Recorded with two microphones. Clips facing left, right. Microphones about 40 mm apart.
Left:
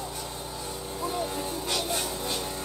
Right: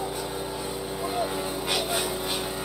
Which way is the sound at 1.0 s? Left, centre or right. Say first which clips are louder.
Right 2 dB; centre.